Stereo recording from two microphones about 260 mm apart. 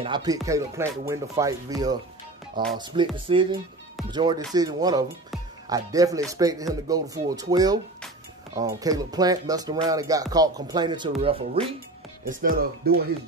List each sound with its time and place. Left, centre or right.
0.0 s speech: centre
12.3 s speech: right